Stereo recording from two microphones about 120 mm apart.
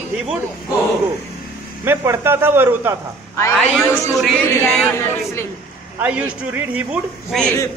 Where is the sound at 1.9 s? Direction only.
20° right (ahead or behind).